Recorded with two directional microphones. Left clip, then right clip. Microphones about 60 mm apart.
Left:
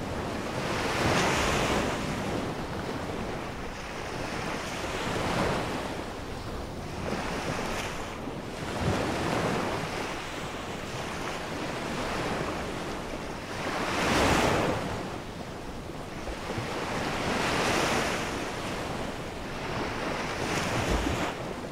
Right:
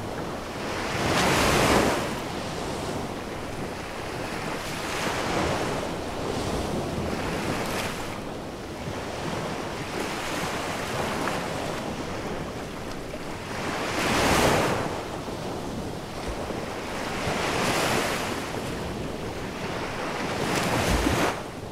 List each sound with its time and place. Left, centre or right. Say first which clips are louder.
1.1 s waves: right 7 dB; centre
7.4 s waves: right 3 dB; centre
13.9 s waves: right 2 dB; centre
17.6 s waves: right 2 dB; centre
20.4 s waves: right 5 dB; centre